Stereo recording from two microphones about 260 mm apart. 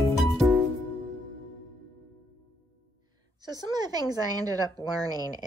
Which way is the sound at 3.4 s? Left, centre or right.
Centre.